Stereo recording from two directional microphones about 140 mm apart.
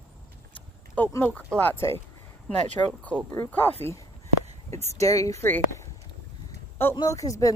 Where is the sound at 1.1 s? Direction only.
10° left (ahead or behind).